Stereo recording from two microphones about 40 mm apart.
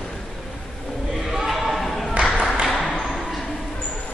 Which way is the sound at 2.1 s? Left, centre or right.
Right.